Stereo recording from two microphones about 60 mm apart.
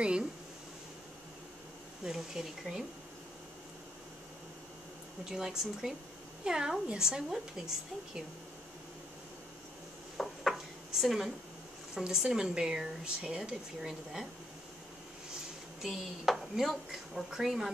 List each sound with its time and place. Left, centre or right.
0.0 s a woman's voice: centre
2.0 s a woman's voice: centre
5.3 s a woman's voice: centre
10.1 s dishes: centre
11.9 s a woman's voice: centre
15.8 s speech: centre